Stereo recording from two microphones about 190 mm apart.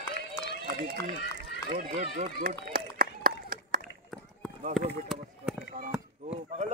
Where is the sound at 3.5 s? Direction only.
50° right (ahead or behind).